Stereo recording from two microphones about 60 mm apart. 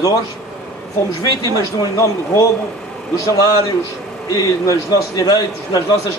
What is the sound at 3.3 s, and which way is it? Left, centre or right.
A man's voice, left.